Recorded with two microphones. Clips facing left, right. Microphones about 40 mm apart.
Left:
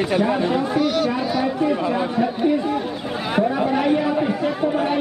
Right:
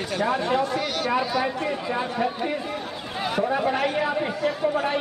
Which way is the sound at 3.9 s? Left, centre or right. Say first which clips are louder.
Left 5 dB; centre.